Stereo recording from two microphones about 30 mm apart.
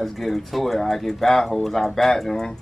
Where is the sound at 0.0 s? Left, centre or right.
Centre.